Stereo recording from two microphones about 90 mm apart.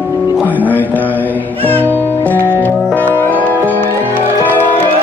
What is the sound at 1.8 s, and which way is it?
Music, 20° left (ahead or behind).